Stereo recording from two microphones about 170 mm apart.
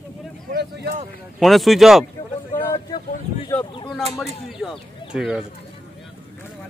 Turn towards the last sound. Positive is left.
turn(degrees=-5)  # may be behind; listen again after turning